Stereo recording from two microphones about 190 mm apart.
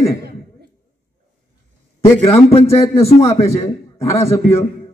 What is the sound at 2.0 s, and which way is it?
Speech, 30° left (ahead or behind).